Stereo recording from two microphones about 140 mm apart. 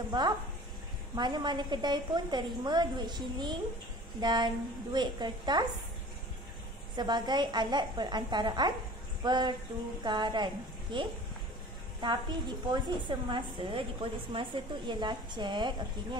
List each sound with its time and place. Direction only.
0.1 s a woman's voice: 30° right (ahead or behind)
7.0 s a woman's voice: 30° right (ahead or behind)